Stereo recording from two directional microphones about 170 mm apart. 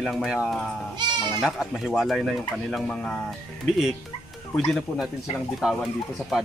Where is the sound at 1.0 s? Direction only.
25° right (ahead or behind).